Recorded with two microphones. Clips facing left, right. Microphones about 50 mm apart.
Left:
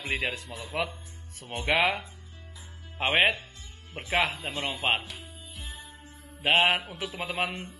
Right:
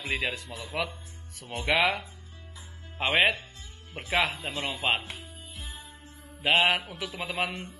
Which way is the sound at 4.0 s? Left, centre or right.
Centre.